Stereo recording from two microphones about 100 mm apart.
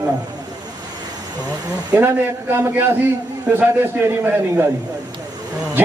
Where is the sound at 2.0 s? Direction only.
25° right (ahead or behind).